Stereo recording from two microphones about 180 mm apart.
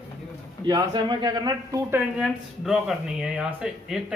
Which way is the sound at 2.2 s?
5° right (ahead or behind).